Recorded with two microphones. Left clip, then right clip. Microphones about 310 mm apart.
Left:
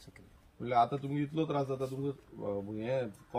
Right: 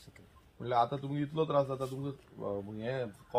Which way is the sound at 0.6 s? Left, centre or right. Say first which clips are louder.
Left 1 dB; centre.